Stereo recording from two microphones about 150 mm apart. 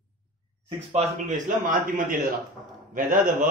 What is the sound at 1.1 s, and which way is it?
A man's voice, 60° right (ahead or behind).